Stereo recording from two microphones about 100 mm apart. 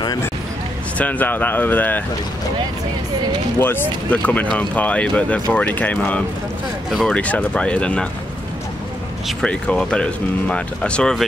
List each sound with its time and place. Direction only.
0.9 s speech: 15° left (ahead or behind)
3.5 s speech: 20° left (ahead or behind)
6.9 s speech: centre (ahead or behind)
7.2 s speech: 15° left (ahead or behind)
9.4 s speech: 10° left (ahead or behind)